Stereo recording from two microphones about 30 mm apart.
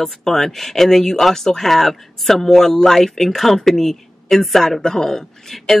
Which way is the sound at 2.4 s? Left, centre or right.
Centre.